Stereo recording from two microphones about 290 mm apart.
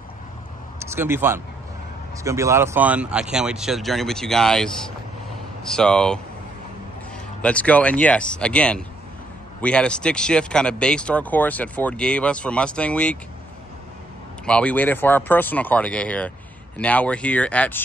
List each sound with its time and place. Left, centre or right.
0.7 s a man's voice: centre
7.4 s speech: centre
14.4 s speech: centre